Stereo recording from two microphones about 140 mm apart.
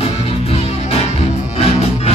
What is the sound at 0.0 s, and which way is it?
Music, 45° left (ahead or behind).